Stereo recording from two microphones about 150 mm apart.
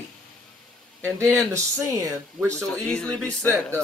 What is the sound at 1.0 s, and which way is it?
Speech, 20° right (ahead or behind).